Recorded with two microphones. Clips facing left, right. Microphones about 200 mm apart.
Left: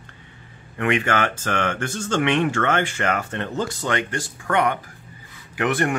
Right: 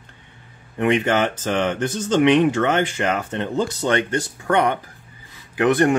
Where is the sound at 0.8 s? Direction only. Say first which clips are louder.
Right 3 dB; 20° right (ahead or behind).